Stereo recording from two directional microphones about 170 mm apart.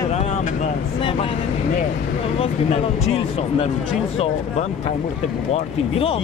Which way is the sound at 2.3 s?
40° left (ahead or behind).